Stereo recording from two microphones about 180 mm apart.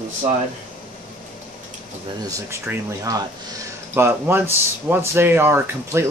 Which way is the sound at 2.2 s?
20° right (ahead or behind).